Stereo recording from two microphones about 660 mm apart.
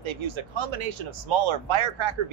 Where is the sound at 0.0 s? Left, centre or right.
Right.